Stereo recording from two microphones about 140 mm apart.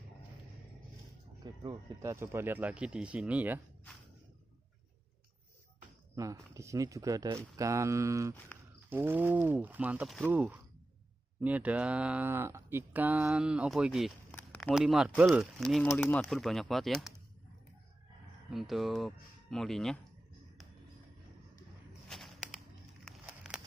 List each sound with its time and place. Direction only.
1.4 s speech: 30° right (ahead or behind)
2.0 s speech: 20° right (ahead or behind)
6.1 s speech: 25° right (ahead or behind)
10.0 s speech: 5° left (ahead or behind)
10.3 s speech: 10° right (ahead or behind)
15.9 s speech: 15° left (ahead or behind)
16.3 s speech: centre (ahead or behind)
18.5 s speech: centre (ahead or behind)
22.0 s a sound: centre (ahead or behind)